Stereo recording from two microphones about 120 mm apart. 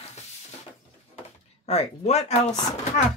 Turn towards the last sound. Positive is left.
turn(degrees=70)  # may be behind; listen again after turning